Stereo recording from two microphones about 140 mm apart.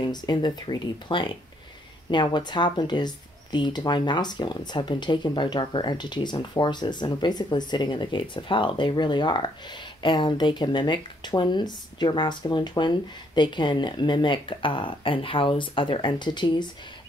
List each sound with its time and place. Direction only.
0.0 s speech: 30° left (ahead or behind)